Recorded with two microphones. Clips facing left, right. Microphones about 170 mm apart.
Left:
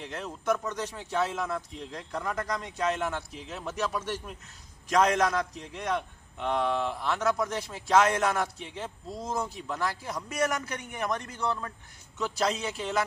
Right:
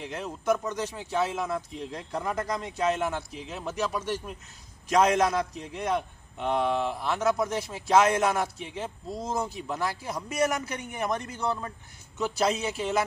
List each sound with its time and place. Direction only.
0.0 s a man's voice: 10° right (ahead or behind)
2.0 s speech: 20° right (ahead or behind)
2.5 s a man's voice: 5° right (ahead or behind)
9.2 s speech: 20° right (ahead or behind)
9.6 s a man's voice: 5° right (ahead or behind)